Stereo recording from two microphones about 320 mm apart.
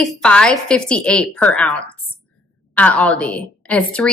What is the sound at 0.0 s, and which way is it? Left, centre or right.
A woman's voice, centre.